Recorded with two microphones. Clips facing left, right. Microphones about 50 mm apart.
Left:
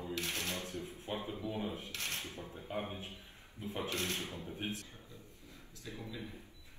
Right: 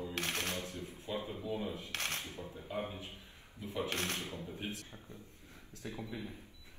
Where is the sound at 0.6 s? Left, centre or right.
Left.